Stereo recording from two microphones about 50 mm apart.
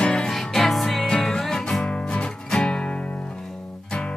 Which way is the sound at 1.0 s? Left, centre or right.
Centre.